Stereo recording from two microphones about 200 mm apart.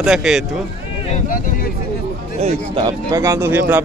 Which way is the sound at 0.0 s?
Centre (ahead or behind).